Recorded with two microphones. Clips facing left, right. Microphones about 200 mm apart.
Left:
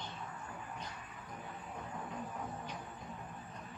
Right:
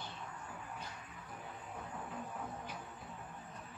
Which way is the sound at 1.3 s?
5° right (ahead or behind).